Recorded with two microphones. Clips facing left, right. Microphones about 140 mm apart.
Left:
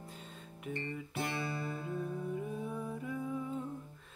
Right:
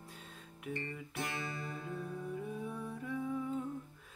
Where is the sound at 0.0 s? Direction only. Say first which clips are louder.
Left 3 dB; centre (ahead or behind).